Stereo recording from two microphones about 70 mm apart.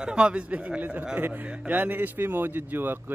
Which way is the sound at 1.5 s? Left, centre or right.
Centre.